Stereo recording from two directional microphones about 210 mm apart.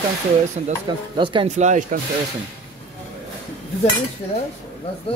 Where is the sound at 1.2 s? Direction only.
30° right (ahead or behind).